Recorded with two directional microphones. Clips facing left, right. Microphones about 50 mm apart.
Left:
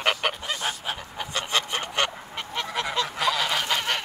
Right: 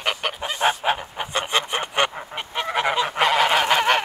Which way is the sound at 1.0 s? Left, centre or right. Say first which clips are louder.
Right 5 dB; right.